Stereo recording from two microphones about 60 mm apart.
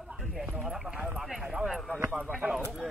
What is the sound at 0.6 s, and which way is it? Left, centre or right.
Clip-clop, centre.